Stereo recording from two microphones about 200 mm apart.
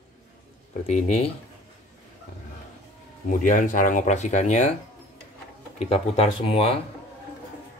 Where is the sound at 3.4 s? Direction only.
40° left (ahead or behind).